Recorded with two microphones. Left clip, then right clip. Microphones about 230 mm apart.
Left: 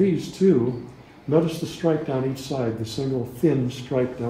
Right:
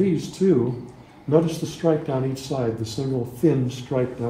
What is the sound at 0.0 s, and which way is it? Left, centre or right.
Speech, right.